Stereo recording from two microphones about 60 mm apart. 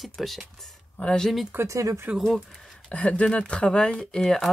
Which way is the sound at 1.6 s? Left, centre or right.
Right.